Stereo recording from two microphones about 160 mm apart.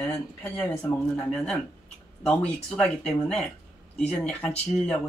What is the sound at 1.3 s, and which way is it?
Speech, 5° left (ahead or behind).